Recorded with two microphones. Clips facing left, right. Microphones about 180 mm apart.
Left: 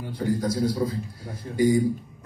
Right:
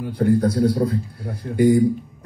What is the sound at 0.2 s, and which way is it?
Speech, 60° right (ahead or behind).